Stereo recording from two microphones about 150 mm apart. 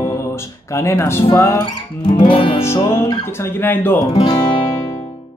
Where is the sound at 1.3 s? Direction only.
20° left (ahead or behind).